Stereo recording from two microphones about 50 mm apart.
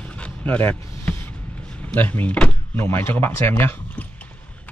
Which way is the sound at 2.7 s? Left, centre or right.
Left.